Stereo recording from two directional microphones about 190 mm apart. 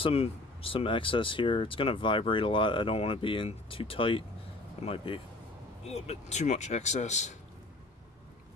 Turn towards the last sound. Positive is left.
turn(degrees=40)  # may be behind; listen again after turning